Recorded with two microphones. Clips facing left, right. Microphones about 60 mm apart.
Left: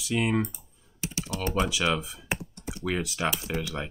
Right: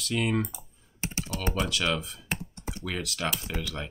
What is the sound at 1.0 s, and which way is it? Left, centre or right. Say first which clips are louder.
Speech: even; right.